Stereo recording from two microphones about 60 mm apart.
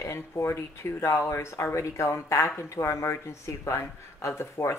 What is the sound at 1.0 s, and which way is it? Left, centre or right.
Speech, left.